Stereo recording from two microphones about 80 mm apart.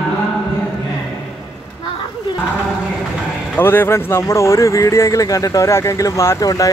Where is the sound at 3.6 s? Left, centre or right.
Left.